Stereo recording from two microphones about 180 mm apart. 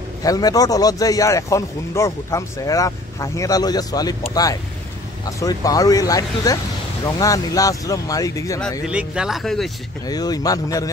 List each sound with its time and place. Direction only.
0.2 s a man's voice: 20° left (ahead or behind)
8.8 s speech: 5° right (ahead or behind)
10.0 s a man's voice: 20° left (ahead or behind)